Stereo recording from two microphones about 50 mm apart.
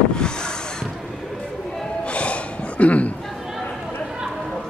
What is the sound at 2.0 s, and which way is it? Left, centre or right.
Gasp, left.